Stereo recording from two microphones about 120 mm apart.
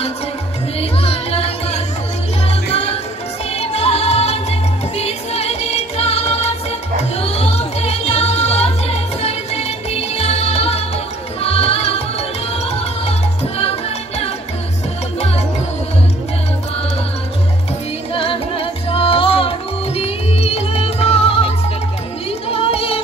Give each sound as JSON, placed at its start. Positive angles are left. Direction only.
{"t": 0.7, "sound": "music", "side_deg": 55}
{"t": 18.1, "sound": "music", "side_deg": 50}